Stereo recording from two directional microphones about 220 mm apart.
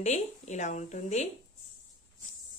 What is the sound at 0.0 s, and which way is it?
Speech, 30° left (ahead or behind).